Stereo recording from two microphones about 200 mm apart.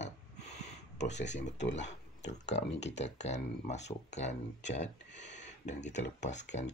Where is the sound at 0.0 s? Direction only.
35° left (ahead or behind).